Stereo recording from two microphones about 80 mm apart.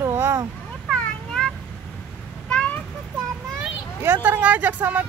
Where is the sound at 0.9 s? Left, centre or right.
Centre.